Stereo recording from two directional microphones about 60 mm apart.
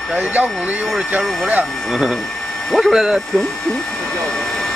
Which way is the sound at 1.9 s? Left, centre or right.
Centre.